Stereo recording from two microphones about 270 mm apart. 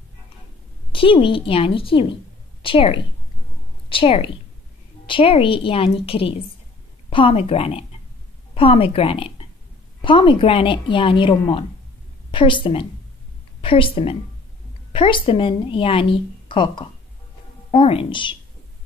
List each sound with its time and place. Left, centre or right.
0.9 s a woman's voice: centre